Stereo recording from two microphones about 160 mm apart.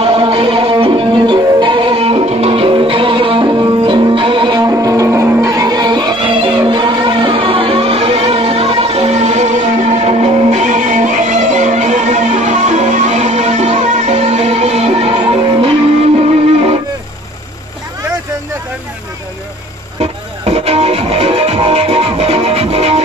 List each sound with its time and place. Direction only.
0.0 s music: 35° right (ahead or behind)
20.0 s music: 40° right (ahead or behind)